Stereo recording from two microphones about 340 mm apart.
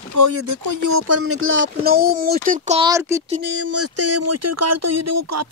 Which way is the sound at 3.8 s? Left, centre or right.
Right.